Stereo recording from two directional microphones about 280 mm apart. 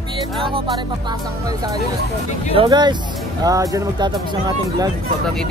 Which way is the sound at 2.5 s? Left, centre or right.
Centre.